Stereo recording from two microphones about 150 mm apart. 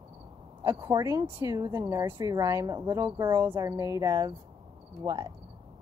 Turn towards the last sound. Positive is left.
turn(degrees=-25)  # may be behind; listen again after turning